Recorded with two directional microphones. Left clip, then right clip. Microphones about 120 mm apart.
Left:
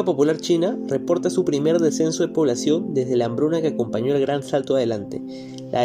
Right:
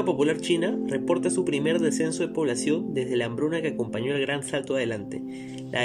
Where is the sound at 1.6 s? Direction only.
25° left (ahead or behind).